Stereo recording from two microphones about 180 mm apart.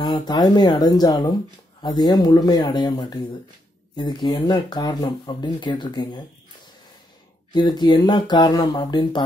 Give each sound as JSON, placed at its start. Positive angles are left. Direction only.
{"t": 0.0, "sound": "speech", "side_deg": 20}
{"t": 7.5, "sound": "speech", "side_deg": 25}